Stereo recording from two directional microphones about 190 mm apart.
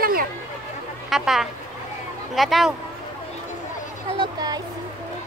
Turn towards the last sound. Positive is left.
turn(degrees=-25)  # may be behind; listen again after turning